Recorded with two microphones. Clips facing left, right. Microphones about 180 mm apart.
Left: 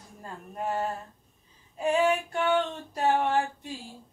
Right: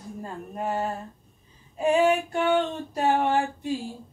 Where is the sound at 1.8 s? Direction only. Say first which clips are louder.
Right 4 dB; 10° right (ahead or behind).